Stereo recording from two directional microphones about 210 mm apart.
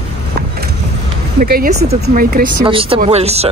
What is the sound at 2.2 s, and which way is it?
Speech, 45° right (ahead or behind).